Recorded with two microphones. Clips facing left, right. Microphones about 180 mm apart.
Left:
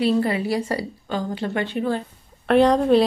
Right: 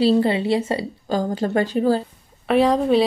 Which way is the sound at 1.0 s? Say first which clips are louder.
Right 8 dB; 40° right (ahead or behind).